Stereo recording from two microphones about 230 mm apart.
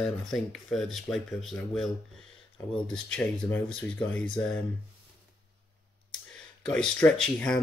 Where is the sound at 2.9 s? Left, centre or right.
Centre.